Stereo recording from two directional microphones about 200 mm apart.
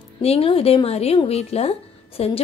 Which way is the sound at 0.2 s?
30° left (ahead or behind).